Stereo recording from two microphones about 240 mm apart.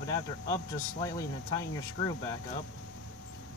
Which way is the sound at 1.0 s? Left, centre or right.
Centre.